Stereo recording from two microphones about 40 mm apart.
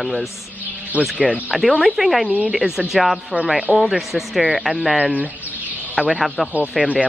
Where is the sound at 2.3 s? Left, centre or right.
Right.